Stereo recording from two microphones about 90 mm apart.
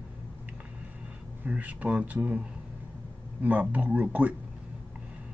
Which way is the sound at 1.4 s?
15° right (ahead or behind).